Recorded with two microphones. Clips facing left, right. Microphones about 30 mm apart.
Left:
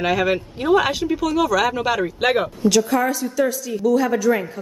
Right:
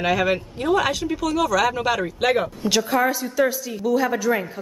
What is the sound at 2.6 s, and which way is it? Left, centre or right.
A woman's voice, centre.